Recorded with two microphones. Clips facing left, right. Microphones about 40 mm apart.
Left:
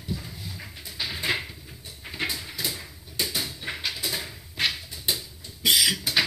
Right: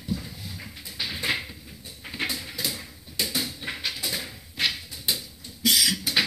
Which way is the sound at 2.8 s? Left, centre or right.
Left.